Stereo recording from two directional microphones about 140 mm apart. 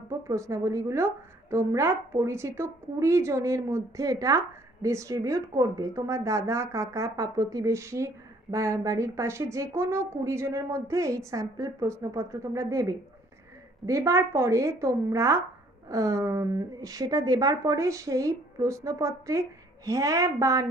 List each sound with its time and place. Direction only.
0.3 s a woman's voice: 20° right (ahead or behind)